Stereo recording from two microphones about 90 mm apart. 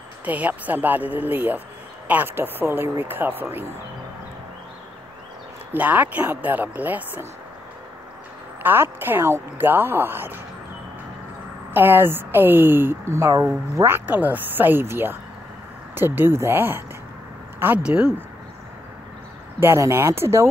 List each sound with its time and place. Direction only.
0.2 s speech: 20° right (ahead or behind)
5.7 s speech: 20° right (ahead or behind)
8.6 s speech: 25° right (ahead or behind)
11.7 s speech: 25° right (ahead or behind)
17.8 s speech: 10° right (ahead or behind)
19.6 s speech: 30° right (ahead or behind)